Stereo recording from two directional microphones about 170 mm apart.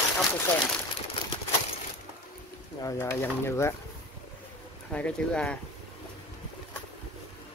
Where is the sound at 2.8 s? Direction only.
15° left (ahead or behind).